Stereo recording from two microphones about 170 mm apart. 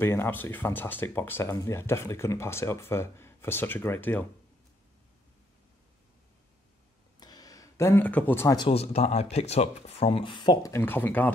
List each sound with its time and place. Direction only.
0.0 s speech: 15° left (ahead or behind)
7.2 s a sound: 25° left (ahead or behind)
8.5 s speech: 35° left (ahead or behind); by 11.3 s 10° left (ahead or behind)